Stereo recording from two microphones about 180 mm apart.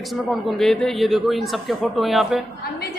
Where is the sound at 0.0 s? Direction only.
Centre (ahead or behind).